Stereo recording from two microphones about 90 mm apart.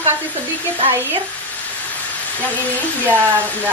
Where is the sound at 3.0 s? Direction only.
20° right (ahead or behind).